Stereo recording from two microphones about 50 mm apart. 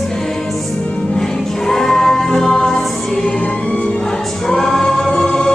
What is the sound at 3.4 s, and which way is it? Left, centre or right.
Music, left.